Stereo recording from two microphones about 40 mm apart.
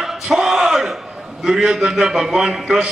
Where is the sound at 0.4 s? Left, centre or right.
Centre.